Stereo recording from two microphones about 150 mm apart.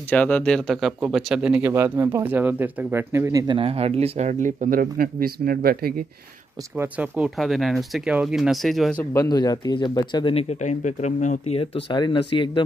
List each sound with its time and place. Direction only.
0.1 s speech: 10° left (ahead or behind); by 3.5 s 20° right (ahead or behind)
3.5 s speech: 40° right (ahead or behind); by 6.0 s 85° right
6.8 s speech: 10° right (ahead or behind)
9.1 s speech: 25° left (ahead or behind)
10.3 s speech: 50° left (ahead or behind); by 12.6 s 35° left (ahead or behind)